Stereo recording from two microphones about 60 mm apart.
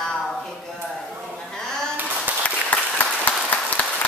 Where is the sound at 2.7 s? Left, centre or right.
Left.